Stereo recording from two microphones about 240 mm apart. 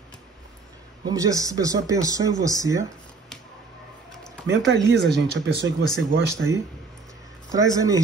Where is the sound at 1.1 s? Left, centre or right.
Centre.